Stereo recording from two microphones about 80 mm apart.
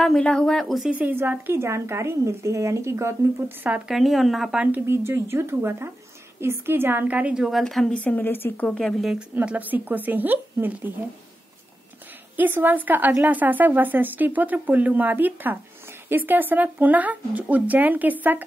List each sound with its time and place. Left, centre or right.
0.0 s speech: centre
0.8 s a woman's voice: centre; by 3.5 s right
3.8 s a woman's voice: centre
4.8 s a woman's voice: right
7.4 s a woman's voice: centre
7.9 s speech: centre
8.7 s a woman's voice: centre
9.3 s speech: right
12.4 s speech: right